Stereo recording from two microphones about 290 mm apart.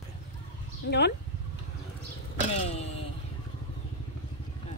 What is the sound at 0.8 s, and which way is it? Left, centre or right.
Speech, left.